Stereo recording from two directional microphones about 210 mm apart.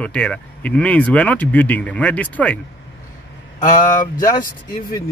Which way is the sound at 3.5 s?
35° left (ahead or behind).